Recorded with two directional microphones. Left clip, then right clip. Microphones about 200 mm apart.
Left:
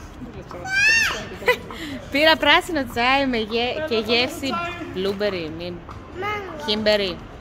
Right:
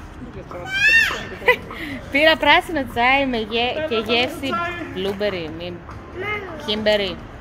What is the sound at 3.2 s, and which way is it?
Female singing, 65° left (ahead or behind).